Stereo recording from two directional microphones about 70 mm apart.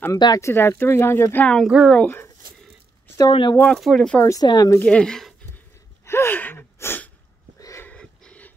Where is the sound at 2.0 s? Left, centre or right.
Left.